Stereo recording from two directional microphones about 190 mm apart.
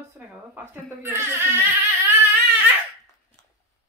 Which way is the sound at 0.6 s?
10° right (ahead or behind).